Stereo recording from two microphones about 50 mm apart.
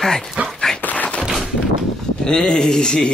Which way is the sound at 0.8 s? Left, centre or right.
Left.